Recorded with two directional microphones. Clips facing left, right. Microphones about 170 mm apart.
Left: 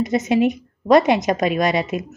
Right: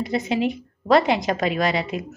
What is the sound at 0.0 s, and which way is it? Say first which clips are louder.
A woman's voice: left 5 dB; 20° left (ahead or behind).